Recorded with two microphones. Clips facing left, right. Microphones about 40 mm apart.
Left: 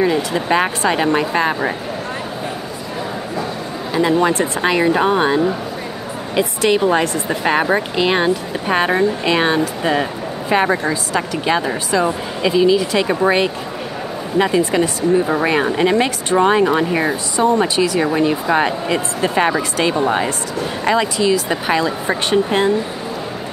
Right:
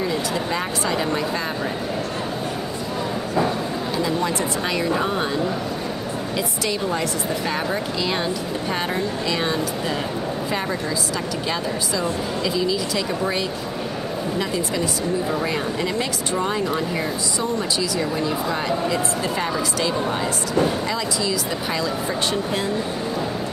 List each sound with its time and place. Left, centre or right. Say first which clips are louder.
0.0 s speech: left 6 dB; left
4.0 s speech: left 9 dB; left
16.3 s speech: left 10 dB; left